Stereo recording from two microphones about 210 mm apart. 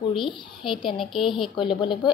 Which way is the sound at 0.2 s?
25° left (ahead or behind).